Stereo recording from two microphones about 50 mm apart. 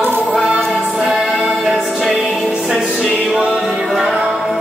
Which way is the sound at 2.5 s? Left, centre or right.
Centre.